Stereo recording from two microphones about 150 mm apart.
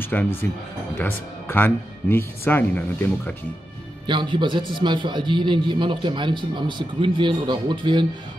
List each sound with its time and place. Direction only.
0.0 s speech: 15° left (ahead or behind)
4.1 s speech: 30° right (ahead or behind)